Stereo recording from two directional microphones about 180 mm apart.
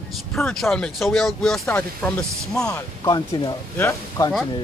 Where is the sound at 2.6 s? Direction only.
20° left (ahead or behind).